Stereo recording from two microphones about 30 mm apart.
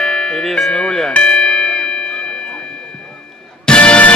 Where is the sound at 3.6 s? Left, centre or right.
Left.